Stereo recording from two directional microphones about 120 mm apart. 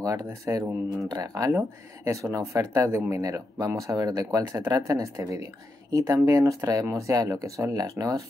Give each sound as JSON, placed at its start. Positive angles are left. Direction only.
{"t": 0.0, "sound": "speech", "side_deg": -30}